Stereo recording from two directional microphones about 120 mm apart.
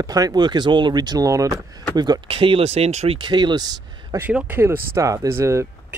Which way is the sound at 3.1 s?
40° right (ahead or behind).